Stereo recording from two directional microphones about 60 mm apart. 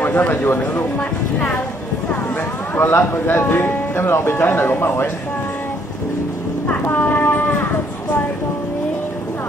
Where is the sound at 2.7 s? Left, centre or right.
Left.